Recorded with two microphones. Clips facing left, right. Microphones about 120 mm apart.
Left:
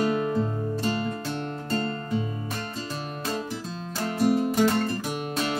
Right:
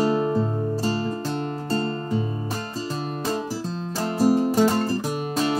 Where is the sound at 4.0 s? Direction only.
35° right (ahead or behind).